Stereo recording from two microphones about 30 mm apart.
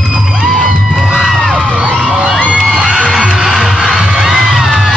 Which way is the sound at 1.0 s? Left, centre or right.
Centre.